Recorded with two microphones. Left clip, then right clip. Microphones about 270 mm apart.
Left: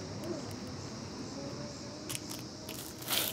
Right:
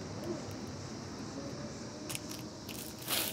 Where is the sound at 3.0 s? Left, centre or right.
Centre.